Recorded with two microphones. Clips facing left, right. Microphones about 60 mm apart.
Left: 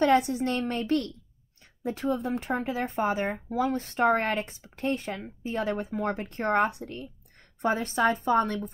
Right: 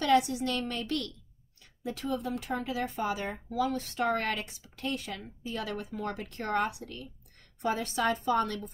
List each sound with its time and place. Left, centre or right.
0.0 s speech: left